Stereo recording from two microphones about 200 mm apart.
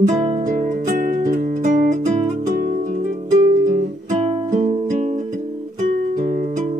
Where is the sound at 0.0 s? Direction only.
40° right (ahead or behind).